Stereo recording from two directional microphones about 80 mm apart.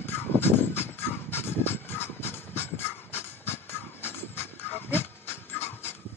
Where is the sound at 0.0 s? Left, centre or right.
Left.